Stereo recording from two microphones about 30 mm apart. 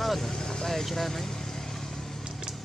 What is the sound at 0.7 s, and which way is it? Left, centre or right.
Vehicle, centre.